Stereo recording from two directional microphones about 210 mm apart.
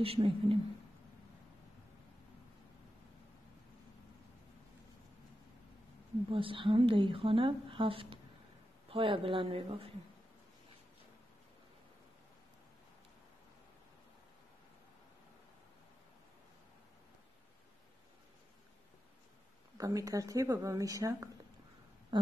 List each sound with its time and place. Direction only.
0.0 s speech: 25° right (ahead or behind)
6.3 s speech: 25° right (ahead or behind)
19.8 s a woman's voice: 15° right (ahead or behind)
22.1 s a sound: 20° right (ahead or behind)